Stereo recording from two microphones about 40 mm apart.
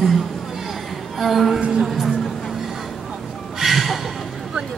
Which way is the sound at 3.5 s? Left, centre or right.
Centre.